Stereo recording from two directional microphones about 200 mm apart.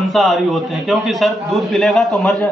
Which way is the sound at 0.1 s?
Centre (ahead or behind).